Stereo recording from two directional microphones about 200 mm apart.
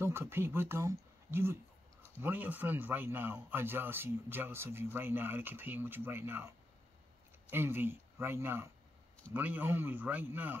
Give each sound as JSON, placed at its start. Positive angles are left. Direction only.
{"t": 0.0, "sound": "a man's voice", "side_deg": -10}
{"t": 7.5, "sound": "a man's voice", "side_deg": -10}